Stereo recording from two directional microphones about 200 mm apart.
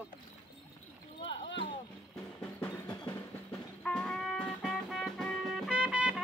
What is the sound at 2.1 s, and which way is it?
Music, 10° left (ahead or behind).